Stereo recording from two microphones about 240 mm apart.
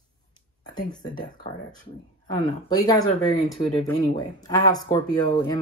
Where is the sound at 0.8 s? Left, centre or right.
Centre.